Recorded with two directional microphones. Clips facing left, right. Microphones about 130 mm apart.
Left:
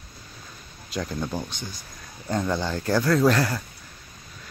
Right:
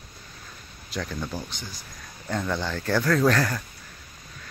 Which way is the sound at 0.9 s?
20° left (ahead or behind).